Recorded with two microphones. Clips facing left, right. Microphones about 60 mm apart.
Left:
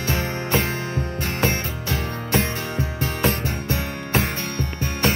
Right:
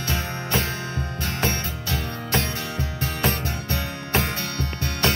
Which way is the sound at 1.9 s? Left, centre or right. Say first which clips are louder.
Left 3 dB; left.